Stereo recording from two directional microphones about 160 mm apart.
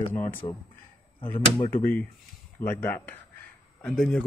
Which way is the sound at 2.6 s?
15° left (ahead or behind).